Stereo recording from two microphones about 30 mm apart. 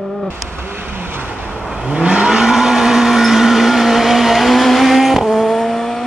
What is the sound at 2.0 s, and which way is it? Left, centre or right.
Vehicle, right.